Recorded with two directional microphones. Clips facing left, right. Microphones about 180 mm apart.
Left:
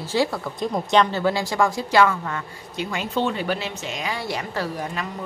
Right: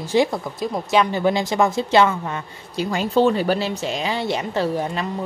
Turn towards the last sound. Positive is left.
turn(degrees=-25)  # may be behind; listen again after turning